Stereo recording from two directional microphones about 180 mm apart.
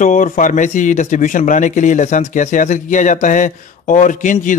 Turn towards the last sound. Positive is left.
turn(degrees=45)  # may be behind; listen again after turning